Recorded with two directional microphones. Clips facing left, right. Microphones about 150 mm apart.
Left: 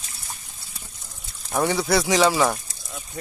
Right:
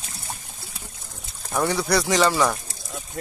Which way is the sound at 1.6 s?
Centre (ahead or behind).